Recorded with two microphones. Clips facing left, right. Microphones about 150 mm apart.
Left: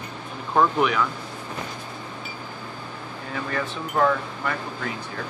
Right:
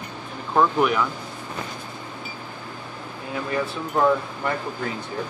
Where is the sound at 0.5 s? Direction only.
5° right (ahead or behind).